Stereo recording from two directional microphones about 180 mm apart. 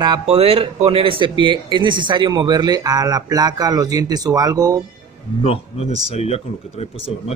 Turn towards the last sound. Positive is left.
turn(degrees=35)  # may be behind; listen again after turning